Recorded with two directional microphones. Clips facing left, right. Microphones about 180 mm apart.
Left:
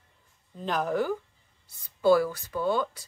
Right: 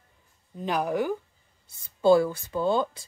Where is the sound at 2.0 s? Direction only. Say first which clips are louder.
Right 2 dB; 25° right (ahead or behind).